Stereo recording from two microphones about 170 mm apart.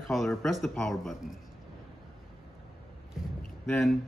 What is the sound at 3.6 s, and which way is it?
Speech, 5° left (ahead or behind).